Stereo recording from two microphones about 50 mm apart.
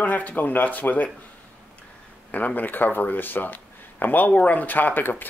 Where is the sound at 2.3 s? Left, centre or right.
Left.